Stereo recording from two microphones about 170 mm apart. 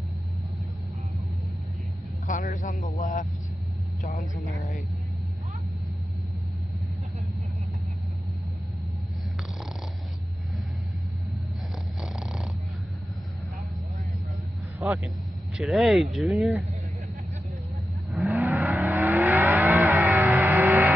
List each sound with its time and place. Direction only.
2.2 s vehicle: 50° left (ahead or behind)
3.0 s speech: 50° left (ahead or behind)
12.0 s a sound: 5° right (ahead or behind)
15.5 s speech: centre (ahead or behind)
18.3 s vehicle: 15° right (ahead or behind)